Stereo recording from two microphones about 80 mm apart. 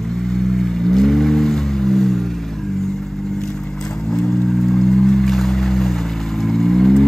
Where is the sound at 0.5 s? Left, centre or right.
Centre.